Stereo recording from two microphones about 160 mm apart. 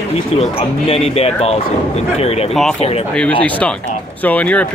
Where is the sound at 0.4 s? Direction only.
40° left (ahead or behind).